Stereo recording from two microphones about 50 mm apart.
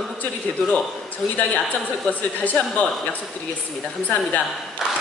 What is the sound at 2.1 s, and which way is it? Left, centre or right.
Speech, left.